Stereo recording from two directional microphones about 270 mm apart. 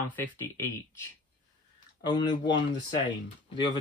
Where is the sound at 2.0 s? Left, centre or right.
Centre.